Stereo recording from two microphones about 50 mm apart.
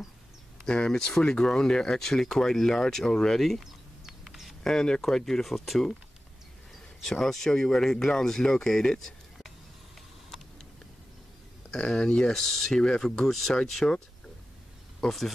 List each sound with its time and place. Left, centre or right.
0.7 s speech: centre
4.6 s speech: centre
7.0 s speech: centre
11.9 s speech: centre
13.8 s speech: centre
15.0 s speech: centre